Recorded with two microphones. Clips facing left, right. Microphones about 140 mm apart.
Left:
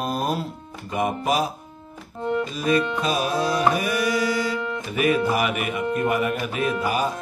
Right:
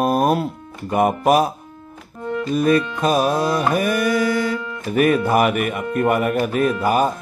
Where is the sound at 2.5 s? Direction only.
50° right (ahead or behind).